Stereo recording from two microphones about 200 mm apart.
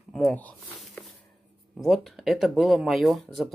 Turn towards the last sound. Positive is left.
turn(degrees=0)  # may be behind; listen again after turning